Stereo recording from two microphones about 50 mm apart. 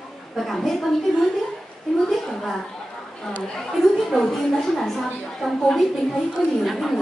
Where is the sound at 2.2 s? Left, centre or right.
Centre.